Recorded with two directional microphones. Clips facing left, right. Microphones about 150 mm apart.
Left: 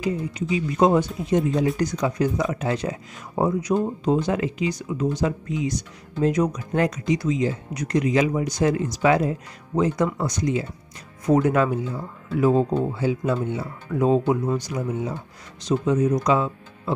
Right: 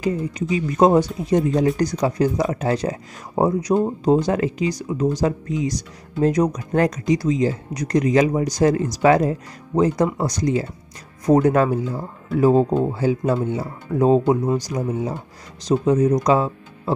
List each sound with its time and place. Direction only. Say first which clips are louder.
0.0 s speech: right 3 dB; 45° right (ahead or behind)